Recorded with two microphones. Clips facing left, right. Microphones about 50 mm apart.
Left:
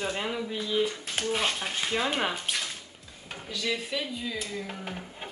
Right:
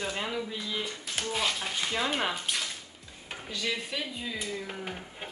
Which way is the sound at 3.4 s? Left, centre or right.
Centre.